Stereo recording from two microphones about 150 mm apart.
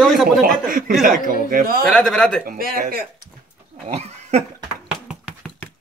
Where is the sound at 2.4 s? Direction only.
75° right (ahead or behind).